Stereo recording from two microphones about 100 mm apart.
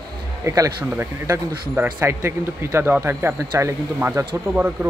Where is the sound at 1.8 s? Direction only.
20° right (ahead or behind).